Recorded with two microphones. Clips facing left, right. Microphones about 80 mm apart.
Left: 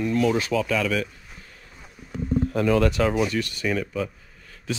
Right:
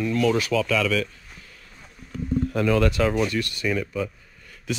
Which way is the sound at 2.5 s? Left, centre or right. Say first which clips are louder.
Even; left.